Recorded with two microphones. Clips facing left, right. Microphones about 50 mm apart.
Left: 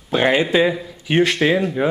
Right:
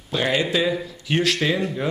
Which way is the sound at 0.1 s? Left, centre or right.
Left.